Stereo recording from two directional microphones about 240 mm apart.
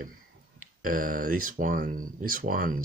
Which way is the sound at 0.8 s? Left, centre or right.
Right.